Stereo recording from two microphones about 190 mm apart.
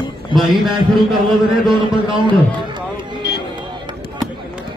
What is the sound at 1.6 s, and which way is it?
Speech, 25° right (ahead or behind).